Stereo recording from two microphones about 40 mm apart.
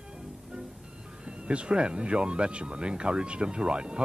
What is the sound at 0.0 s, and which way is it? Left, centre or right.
Speech, right.